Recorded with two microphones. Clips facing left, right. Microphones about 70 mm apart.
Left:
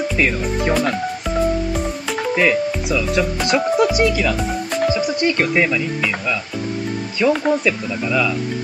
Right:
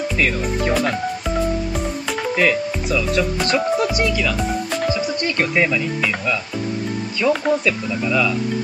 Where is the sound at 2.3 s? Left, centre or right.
Centre.